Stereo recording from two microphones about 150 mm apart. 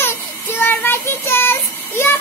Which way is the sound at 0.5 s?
15° left (ahead or behind).